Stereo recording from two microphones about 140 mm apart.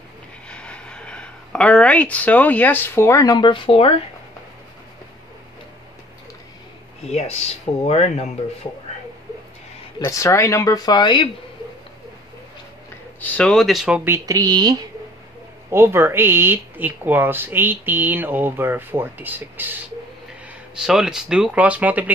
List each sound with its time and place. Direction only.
0.5 s a sound: 10° left (ahead or behind)
3.3 s speech: 35° left (ahead or behind)
7.1 s speech: 50° left (ahead or behind)
9.9 s speech: 25° left (ahead or behind)
13.2 s speech: 10° left (ahead or behind); by 14.1 s 5° right (ahead or behind)
14.1 s speech: 25° right (ahead or behind)
15.7 s speech: 15° right (ahead or behind)